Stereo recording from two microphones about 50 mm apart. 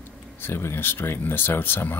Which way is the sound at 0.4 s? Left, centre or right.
Left.